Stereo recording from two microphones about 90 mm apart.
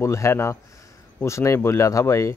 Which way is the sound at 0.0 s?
35° left (ahead or behind).